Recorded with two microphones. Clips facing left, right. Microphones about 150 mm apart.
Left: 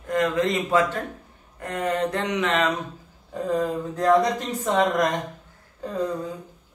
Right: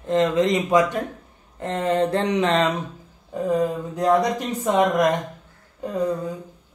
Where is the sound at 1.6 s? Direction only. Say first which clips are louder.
Right 4 dB; 25° right (ahead or behind).